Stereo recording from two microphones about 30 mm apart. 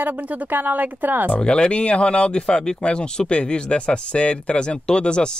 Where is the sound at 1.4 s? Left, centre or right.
Left.